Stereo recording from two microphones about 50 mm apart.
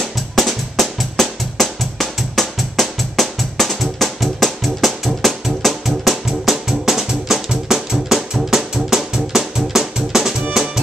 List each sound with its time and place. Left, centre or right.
0.0 s drum: centre
6.2 s music: centre